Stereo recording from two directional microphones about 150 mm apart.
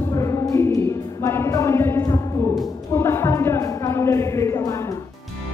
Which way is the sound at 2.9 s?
15° left (ahead or behind).